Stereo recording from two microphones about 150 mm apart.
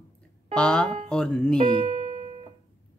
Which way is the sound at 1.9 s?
55° right (ahead or behind).